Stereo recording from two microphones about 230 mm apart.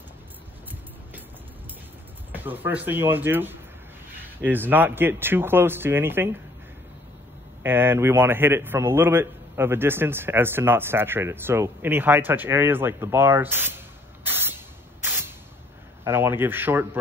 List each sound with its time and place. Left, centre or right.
2.3 s a man's voice: centre
7.6 s a man's voice: centre
15.0 s a sound: centre
16.0 s a man's voice: centre